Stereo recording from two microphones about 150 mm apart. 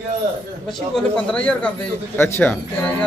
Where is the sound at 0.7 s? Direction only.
5° left (ahead or behind).